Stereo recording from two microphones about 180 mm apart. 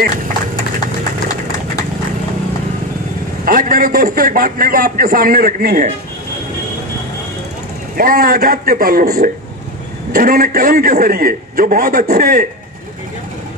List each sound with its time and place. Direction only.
3.4 s a man's voice: 50° right (ahead or behind)
8.0 s a man's voice: 55° right (ahead or behind)